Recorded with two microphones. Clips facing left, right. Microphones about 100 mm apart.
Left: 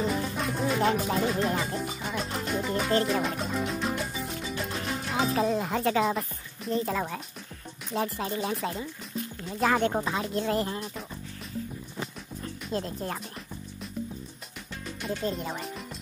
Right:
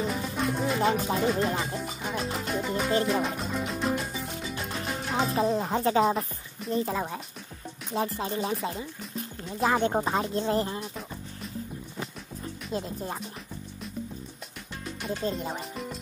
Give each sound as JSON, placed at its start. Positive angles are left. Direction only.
{"t": 0.0, "sound": "music", "side_deg": 0}
{"t": 1.1, "sound": "speech", "side_deg": 0}
{"t": 3.1, "sound": "music", "side_deg": 0}
{"t": 5.6, "sound": "speech", "side_deg": -25}
{"t": 6.7, "sound": "speech", "side_deg": -15}
{"t": 10.0, "sound": "speech", "side_deg": -30}
{"t": 12.7, "sound": "speech", "side_deg": -15}
{"t": 15.6, "sound": "music", "side_deg": 0}